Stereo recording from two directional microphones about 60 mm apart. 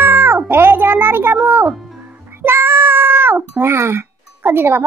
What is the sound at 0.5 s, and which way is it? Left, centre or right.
Music, right.